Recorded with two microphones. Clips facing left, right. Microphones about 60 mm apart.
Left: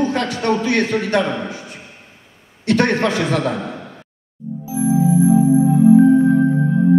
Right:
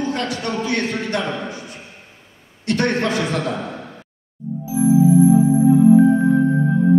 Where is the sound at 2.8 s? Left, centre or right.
Left.